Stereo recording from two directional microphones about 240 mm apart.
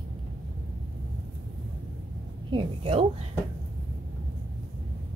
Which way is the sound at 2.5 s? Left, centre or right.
Right.